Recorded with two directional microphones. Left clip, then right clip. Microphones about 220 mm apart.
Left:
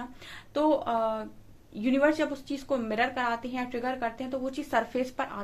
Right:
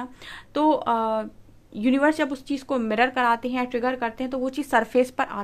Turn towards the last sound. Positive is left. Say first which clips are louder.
# right 9 dB
turn(degrees=-45)  # may be behind; listen again after turning